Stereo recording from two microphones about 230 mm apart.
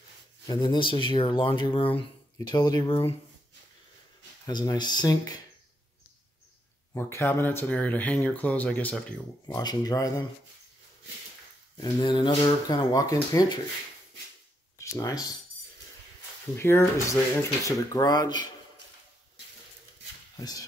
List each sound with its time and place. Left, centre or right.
0.5 s speech: centre
4.5 s speech: centre
6.9 s speech: centre
9.5 s speech: centre
11.7 s speech: centre
14.8 s speech: centre
16.5 s speech: centre
20.3 s speech: centre